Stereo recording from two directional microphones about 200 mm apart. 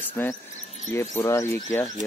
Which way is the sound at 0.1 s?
15° left (ahead or behind).